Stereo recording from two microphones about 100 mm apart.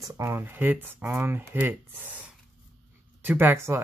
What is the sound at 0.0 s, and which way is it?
Speech, 30° right (ahead or behind).